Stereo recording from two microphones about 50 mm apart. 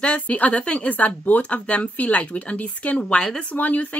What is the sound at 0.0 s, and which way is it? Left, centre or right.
Speech, left.